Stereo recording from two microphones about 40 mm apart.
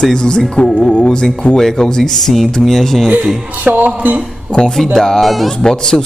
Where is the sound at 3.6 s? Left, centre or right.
Right.